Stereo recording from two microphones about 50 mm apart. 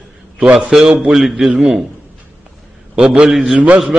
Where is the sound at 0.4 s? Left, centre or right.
Centre.